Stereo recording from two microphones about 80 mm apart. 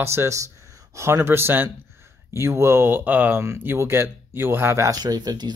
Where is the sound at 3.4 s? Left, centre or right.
Right.